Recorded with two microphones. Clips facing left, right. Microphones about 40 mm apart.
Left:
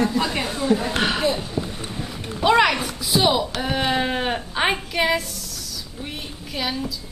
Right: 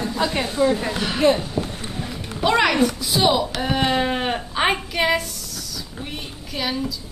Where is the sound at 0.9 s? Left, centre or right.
Left.